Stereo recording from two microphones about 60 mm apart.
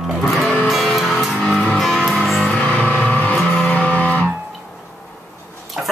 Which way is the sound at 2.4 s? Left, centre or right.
Left.